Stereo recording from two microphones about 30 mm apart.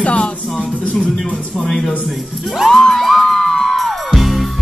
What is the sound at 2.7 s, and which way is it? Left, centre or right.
Music, centre.